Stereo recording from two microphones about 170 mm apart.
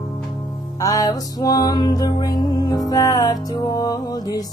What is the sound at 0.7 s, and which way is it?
Music, 20° left (ahead or behind).